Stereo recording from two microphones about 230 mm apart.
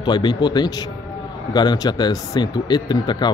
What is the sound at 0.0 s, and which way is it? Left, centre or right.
Speech, centre.